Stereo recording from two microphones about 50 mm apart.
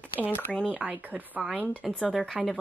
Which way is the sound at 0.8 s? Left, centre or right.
Right.